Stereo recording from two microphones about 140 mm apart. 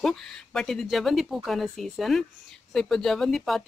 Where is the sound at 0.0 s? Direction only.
5° left (ahead or behind).